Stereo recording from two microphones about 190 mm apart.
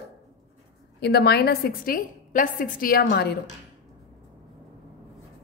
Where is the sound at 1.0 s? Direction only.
60° left (ahead or behind).